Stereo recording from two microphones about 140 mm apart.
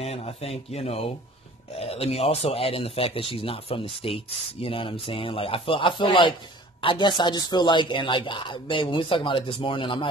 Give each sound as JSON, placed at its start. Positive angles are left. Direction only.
{"t": 0.0, "sound": "speech", "side_deg": 45}